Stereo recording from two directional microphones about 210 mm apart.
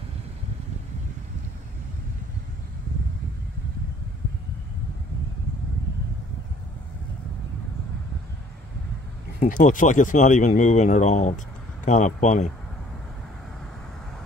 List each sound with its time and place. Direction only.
9.4 s speech: 35° left (ahead or behind)